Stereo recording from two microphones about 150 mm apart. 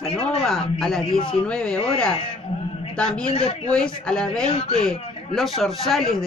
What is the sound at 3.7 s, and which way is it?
Speech, 5° left (ahead or behind).